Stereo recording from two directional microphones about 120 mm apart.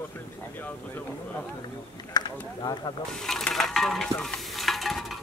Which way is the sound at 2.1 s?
35° left (ahead or behind).